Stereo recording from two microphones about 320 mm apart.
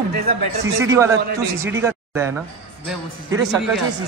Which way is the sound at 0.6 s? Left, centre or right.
Centre.